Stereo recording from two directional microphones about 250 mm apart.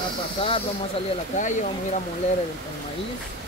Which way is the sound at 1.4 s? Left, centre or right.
Left.